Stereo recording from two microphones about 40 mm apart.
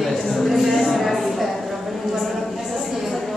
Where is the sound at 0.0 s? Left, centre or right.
Centre.